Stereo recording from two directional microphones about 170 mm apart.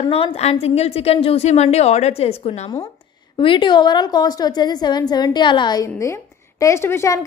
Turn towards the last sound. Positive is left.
turn(degrees=15)  # may be behind; listen again after turning